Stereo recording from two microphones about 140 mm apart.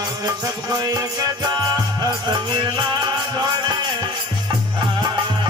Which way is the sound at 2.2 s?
30° right (ahead or behind).